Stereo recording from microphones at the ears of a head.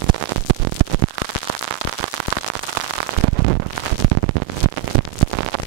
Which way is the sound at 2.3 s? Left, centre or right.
Right.